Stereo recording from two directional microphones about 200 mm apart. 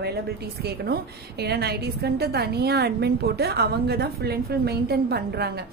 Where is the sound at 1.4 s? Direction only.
55° right (ahead or behind).